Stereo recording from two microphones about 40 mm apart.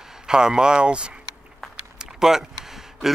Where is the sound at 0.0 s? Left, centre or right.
Centre.